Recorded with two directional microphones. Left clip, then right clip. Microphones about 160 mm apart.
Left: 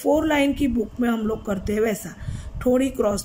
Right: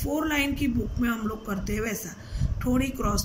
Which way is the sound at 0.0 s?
50° left (ahead or behind).